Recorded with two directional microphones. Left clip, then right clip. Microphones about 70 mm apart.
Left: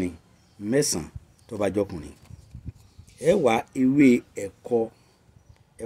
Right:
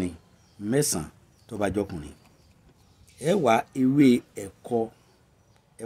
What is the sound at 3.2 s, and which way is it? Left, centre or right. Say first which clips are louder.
Speech: left 1 dB; right.